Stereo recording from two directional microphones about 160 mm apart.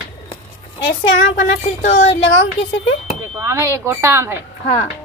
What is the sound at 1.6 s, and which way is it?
Speech, 45° left (ahead or behind).